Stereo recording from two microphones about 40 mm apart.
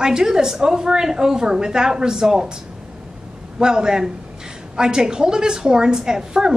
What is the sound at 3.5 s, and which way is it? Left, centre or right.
A woman's voice, centre.